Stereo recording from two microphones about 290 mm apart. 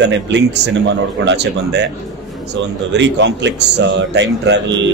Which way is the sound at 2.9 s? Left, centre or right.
Right.